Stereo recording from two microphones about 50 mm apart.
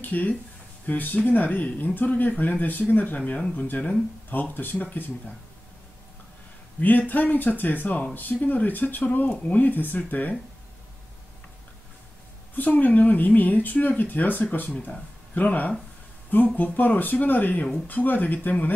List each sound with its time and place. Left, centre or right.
0.0 s speech: left
6.8 s speech: left
12.5 s speech: left